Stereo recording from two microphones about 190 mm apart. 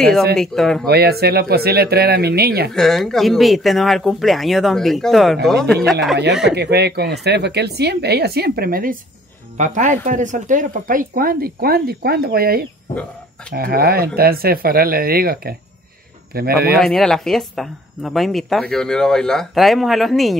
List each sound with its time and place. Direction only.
0.4 s speech: centre (ahead or behind)
0.8 s speech: 55° right (ahead or behind)
2.7 s speech: centre (ahead or behind)
6.5 s speech: 60° right (ahead or behind)
16.8 s speech: centre (ahead or behind)